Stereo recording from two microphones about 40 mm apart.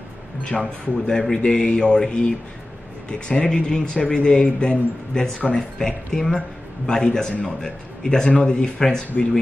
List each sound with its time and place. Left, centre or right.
0.4 s speech: left